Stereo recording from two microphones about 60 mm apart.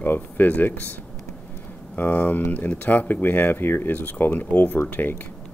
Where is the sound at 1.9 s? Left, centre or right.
Left.